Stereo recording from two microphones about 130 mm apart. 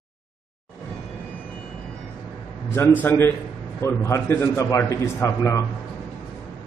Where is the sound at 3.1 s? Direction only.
15° left (ahead or behind).